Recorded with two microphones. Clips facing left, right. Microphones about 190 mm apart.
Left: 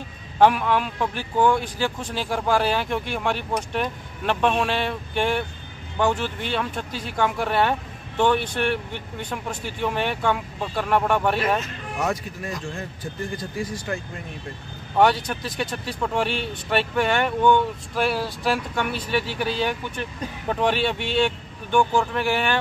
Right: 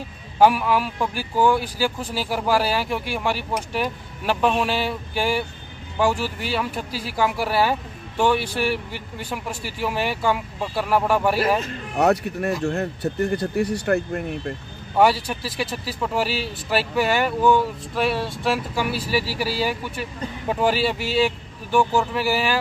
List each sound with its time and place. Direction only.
0.4 s speech: 5° right (ahead or behind)
12.0 s speech: 65° right (ahead or behind)
15.0 s speech: 5° right (ahead or behind)